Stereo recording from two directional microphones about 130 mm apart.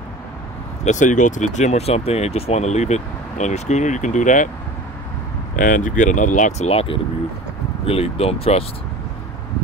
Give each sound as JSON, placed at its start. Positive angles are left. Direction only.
{"t": 0.8, "sound": "speech", "side_deg": 70}
{"t": 5.6, "sound": "speech", "side_deg": 90}
{"t": 6.7, "sound": "speech", "side_deg": 50}